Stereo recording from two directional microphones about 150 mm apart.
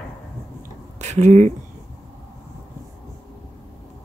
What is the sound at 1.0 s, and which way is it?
Speech, 50° right (ahead or behind).